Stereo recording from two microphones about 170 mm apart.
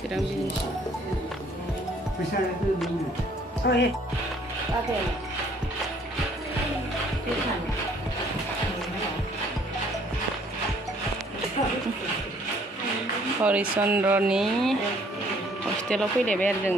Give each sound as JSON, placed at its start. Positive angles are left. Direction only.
{"t": 3.6, "sound": "speech", "side_deg": 90}
{"t": 13.4, "sound": "speech", "side_deg": -10}
{"t": 15.9, "sound": "speech", "side_deg": 5}